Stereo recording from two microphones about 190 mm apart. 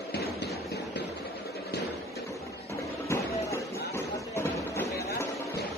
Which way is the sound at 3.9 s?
15° left (ahead or behind).